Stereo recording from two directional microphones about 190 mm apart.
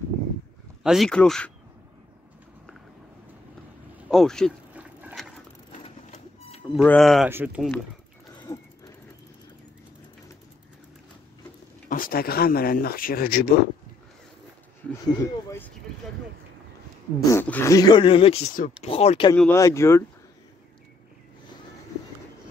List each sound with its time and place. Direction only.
0.8 s speech: centre (ahead or behind)
4.1 s speech: centre (ahead or behind)
4.7 s patter: 5° right (ahead or behind)
6.8 s speech: 5° left (ahead or behind)
7.2 s speech: 10° right (ahead or behind)
8.4 s wheeze: 20° left (ahead or behind)
11.9 s speech: 50° left (ahead or behind)
15.0 s speech: 20° left (ahead or behind)
17.3 s speech: 10° left (ahead or behind); by 19.3 s 30° left (ahead or behind)
19.3 s speech: 5° left (ahead or behind)